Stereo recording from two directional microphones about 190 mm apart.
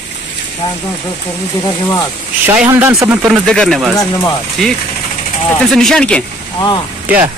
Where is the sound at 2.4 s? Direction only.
10° right (ahead or behind).